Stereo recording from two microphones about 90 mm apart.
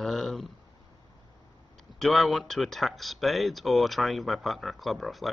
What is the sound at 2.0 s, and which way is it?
Speech, centre (ahead or behind).